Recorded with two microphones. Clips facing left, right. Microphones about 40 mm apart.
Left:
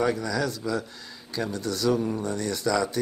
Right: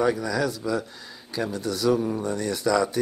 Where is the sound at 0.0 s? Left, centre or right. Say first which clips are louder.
Right 2 dB; centre.